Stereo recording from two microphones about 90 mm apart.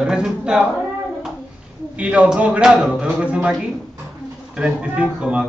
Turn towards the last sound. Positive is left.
turn(degrees=-10)  # may be behind; listen again after turning